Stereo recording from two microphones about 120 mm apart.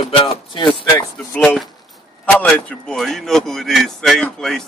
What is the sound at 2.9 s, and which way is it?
Speech, centre (ahead or behind).